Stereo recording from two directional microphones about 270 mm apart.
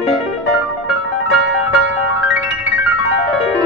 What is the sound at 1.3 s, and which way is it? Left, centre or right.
Music, left.